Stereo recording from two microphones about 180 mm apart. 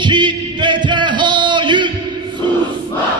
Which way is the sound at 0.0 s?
25° right (ahead or behind).